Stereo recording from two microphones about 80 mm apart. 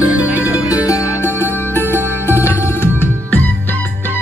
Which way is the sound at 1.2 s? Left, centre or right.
Left.